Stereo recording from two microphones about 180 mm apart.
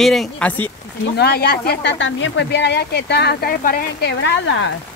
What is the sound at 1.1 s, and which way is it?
Speech, 65° left (ahead or behind).